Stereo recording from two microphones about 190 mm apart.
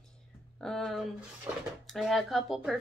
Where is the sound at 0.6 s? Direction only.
Centre (ahead or behind).